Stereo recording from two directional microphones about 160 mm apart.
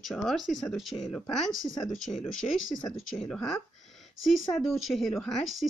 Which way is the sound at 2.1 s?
20° left (ahead or behind).